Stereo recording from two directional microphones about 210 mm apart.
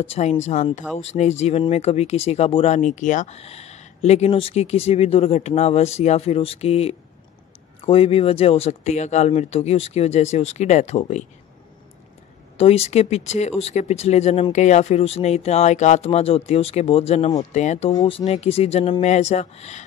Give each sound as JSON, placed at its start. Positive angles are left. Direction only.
{"t": 0.0, "sound": "speech", "side_deg": 30}
{"t": 12.5, "sound": "speech", "side_deg": 30}